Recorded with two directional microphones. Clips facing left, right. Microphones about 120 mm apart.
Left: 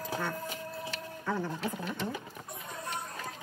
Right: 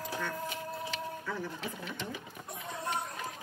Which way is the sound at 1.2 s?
40° left (ahead or behind).